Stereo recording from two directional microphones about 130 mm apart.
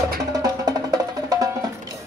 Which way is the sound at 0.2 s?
30° right (ahead or behind).